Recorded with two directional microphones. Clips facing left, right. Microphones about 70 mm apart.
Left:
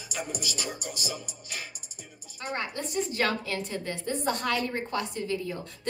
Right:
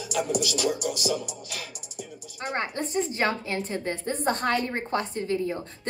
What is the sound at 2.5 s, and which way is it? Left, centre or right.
A woman's voice, right.